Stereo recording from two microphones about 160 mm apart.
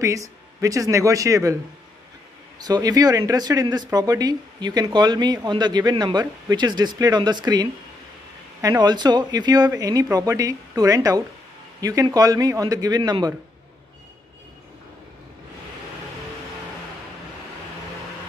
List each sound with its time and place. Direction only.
0.0 s speech: 20° right (ahead or behind)
2.6 s speech: 25° right (ahead or behind)
8.8 s speech: 25° right (ahead or behind)